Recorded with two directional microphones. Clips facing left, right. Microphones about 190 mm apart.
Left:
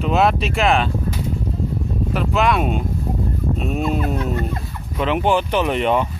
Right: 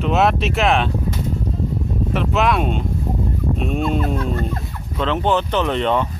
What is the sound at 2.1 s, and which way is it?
Speech, centre (ahead or behind).